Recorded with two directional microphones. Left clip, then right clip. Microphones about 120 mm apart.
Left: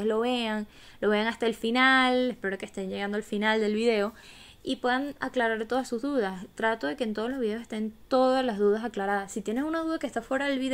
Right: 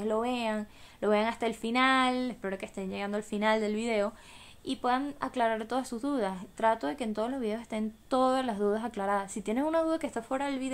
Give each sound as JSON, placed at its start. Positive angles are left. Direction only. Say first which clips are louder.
{"t": 0.0, "sound": "a woman's voice", "louder": "left 3 dB", "side_deg": 30}
{"t": 10.3, "sound": "speech", "louder": "left 5 dB", "side_deg": 35}